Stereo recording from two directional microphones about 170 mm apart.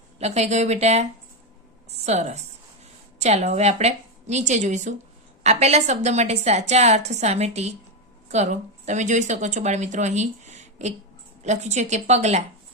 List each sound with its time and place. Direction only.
0.2 s a woman's voice: 40° right (ahead or behind)